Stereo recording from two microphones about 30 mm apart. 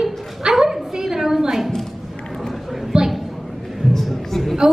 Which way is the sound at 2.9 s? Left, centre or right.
Right.